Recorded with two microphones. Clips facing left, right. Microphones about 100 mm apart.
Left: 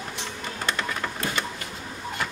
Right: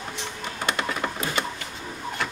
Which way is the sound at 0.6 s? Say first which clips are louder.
Right 2 dB; 10° right (ahead or behind).